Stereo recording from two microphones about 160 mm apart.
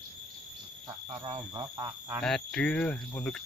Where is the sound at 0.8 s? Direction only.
30° right (ahead or behind).